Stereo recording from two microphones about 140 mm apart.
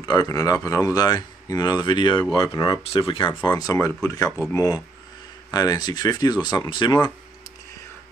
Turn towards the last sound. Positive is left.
turn(degrees=35)  # may be behind; listen again after turning